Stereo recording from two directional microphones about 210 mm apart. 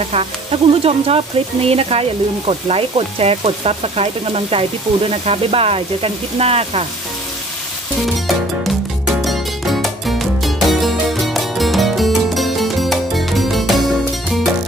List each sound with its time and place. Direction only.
0.1 s sizzle: 30° right (ahead or behind)
8.6 s music: centre (ahead or behind)